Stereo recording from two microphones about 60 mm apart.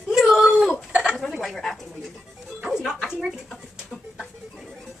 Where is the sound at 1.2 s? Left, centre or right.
Centre.